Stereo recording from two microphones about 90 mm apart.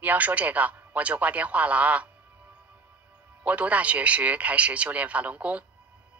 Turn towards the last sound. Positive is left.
turn(degrees=-15)  # may be behind; listen again after turning